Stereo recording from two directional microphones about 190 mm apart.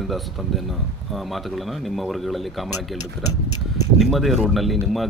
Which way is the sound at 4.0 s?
Centre (ahead or behind).